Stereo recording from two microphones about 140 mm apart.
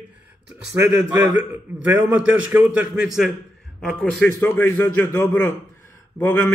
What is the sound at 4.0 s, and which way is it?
A man's voice, 10° left (ahead or behind).